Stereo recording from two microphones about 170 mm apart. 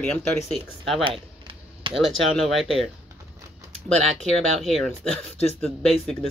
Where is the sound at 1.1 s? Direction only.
30° right (ahead or behind).